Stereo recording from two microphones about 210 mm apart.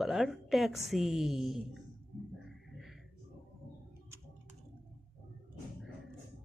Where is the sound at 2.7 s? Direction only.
Centre (ahead or behind).